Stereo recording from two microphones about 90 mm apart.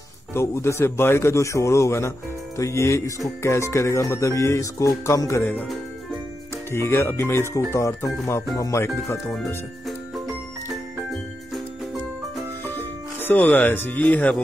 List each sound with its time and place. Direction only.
0.3 s speech: 30° left (ahead or behind)
6.7 s speech: 30° left (ahead or behind)
13.3 s speech: 20° left (ahead or behind)